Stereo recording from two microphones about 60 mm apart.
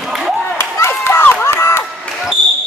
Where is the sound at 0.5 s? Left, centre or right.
Left.